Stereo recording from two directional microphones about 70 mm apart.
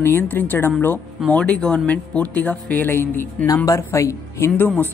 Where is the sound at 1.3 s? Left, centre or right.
Centre; by 3.5 s left.